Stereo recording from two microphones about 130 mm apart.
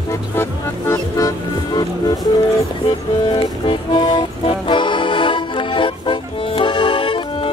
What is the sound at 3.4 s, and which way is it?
Music, 40° left (ahead or behind).